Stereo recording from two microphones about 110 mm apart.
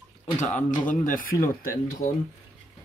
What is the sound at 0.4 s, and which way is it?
Speech, 90° left.